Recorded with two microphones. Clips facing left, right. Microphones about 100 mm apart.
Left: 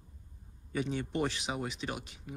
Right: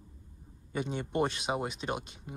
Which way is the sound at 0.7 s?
20° right (ahead or behind).